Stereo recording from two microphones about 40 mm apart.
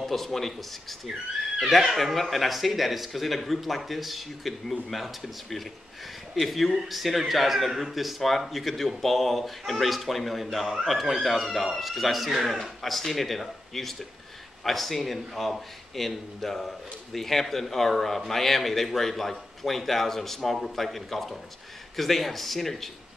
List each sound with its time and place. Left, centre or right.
0.0 s a man's voice: centre
2.0 s a man's voice: centre